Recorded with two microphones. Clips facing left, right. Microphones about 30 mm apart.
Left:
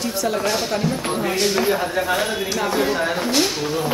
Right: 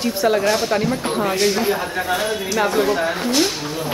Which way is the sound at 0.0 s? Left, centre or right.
Right.